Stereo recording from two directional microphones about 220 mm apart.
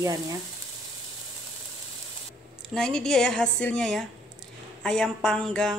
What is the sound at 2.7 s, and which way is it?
A woman's voice, centre (ahead or behind).